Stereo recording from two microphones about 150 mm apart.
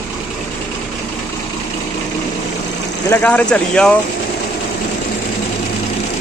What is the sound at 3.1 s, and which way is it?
Speech, 10° left (ahead or behind).